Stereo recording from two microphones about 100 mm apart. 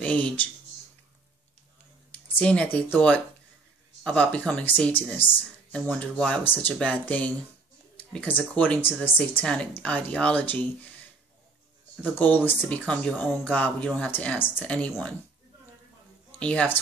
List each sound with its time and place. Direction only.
0.0 s speech: 10° left (ahead or behind)
2.1 s speech: 15° left (ahead or behind)
6.4 s speech: 20° left (ahead or behind)
12.0 s speech: 15° left (ahead or behind)
16.3 s a man's voice: 10° left (ahead or behind)